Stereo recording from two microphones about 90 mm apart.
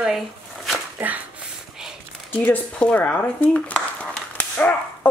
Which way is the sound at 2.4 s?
10° left (ahead or behind).